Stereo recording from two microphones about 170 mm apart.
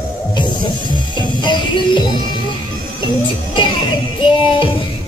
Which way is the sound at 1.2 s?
25° left (ahead or behind).